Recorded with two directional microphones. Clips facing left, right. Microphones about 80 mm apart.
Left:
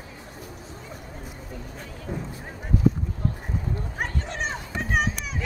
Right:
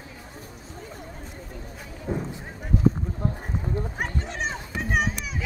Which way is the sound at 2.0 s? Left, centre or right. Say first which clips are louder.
Right 4 dB; right.